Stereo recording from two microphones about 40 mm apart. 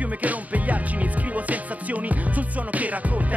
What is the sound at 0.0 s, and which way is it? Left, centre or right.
Music, right.